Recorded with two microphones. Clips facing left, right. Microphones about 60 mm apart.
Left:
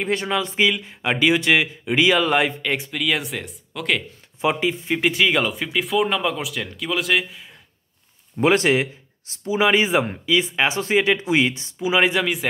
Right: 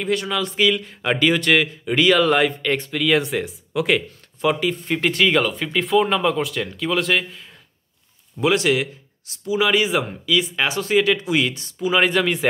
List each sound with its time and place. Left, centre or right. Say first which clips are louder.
0.0 s speech: even; left
0.8 s speech: even; centre
4.4 s speech: right 1 dB; centre
8.4 s speech: left 1 dB; left
11.9 s speech: right 1 dB; centre